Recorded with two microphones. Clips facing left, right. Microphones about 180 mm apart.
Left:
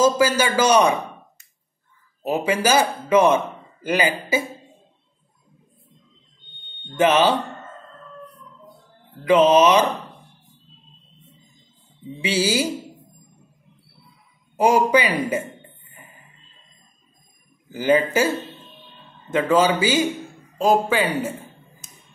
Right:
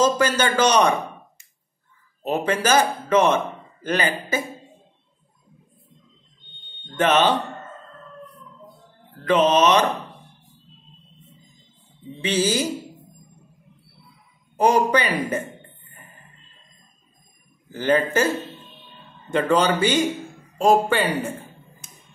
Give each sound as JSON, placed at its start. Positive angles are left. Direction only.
{"t": 0.0, "sound": "a man's voice", "side_deg": 10}
{"t": 2.2, "sound": "a man's voice", "side_deg": 10}
{"t": 7.0, "sound": "a man's voice", "side_deg": 10}
{"t": 9.2, "sound": "a man's voice", "side_deg": 10}
{"t": 12.2, "sound": "a man's voice", "side_deg": 10}
{"t": 14.6, "sound": "a man's voice", "side_deg": 10}
{"t": 17.6, "sound": "a man's voice", "side_deg": 10}